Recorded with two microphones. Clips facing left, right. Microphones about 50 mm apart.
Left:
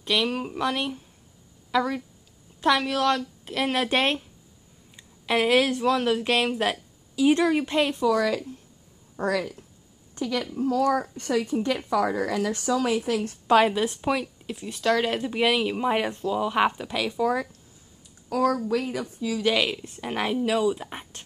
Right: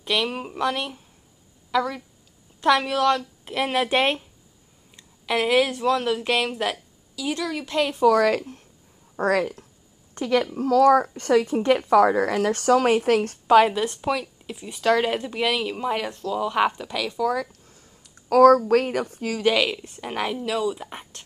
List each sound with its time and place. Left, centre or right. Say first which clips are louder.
0.0 s a woman's voice: even; centre
4.9 s speech: even; centre
7.2 s speech: left 7 dB; left
8.0 s a woman's voice: right 5 dB; right
13.5 s a woman's voice: right 3 dB; centre
14.7 s speech: right 3 dB; centre
15.0 s a woman's voice: right 1 dB; centre
15.3 s speech: left 1 dB; centre
18.3 s a woman's voice: right 10 dB; right
18.7 s speech: right 6 dB; right
19.5 s a woman's voice: right 2 dB; centre